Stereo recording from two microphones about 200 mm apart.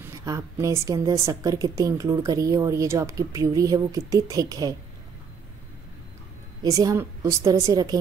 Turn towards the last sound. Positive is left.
turn(degrees=-20)  # may be behind; listen again after turning